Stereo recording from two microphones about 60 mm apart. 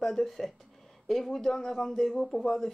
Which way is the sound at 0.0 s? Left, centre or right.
Centre.